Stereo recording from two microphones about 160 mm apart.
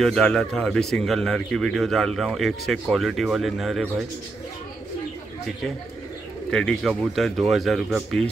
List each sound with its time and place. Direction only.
0.0 s speech: 5° left (ahead or behind)
6.5 s speech: 5° left (ahead or behind)